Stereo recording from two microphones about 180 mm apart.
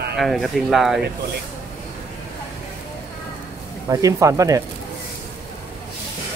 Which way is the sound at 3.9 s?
20° right (ahead or behind).